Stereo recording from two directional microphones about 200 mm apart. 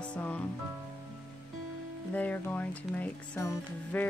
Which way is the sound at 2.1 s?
10° left (ahead or behind).